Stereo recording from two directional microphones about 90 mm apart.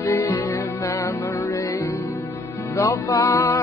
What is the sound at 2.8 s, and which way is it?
Music, 50° left (ahead or behind).